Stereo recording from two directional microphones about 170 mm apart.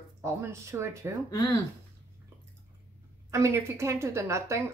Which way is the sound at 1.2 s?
20° left (ahead or behind).